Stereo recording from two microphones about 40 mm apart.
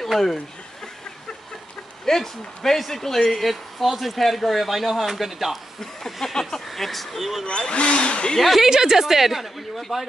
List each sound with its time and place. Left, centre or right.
0.0 s speech: centre
2.0 s speech: centre
5.8 s a sound: centre
6.5 s speech: centre
7.4 s speech: left
8.4 s speech: centre
8.6 s a woman's voice: centre